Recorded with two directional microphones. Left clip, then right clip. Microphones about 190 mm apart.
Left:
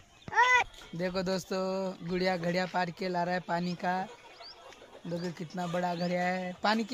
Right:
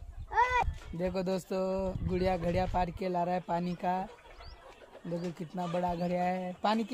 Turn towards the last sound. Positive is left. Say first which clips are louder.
# left 1 dB
turn(degrees=5)  # may be behind; listen again after turning